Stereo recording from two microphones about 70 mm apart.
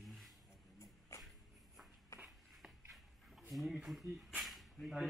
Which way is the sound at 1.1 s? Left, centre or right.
Left.